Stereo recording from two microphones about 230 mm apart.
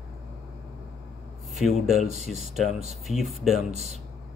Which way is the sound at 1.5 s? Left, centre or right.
Centre.